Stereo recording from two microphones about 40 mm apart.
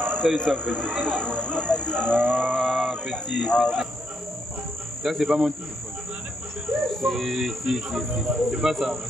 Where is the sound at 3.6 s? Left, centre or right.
Centre.